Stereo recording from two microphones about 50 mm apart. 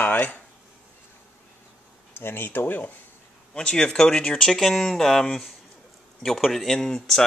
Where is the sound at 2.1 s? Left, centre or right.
Left.